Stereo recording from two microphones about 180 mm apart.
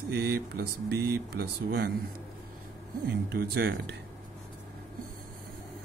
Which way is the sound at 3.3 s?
60° right (ahead or behind).